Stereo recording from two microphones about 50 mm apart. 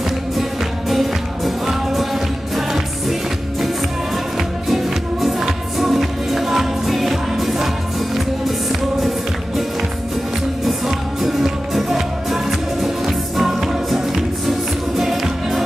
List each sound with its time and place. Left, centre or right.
0.4 s music: centre
4.4 s music: centre
10.6 s music: centre